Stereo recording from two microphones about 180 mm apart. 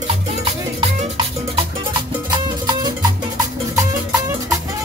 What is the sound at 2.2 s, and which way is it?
Music, 25° right (ahead or behind).